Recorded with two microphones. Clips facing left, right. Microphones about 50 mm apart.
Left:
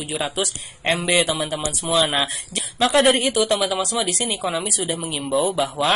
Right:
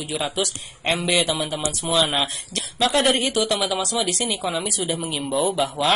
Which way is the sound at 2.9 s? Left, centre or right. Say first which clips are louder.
Left 4 dB; centre.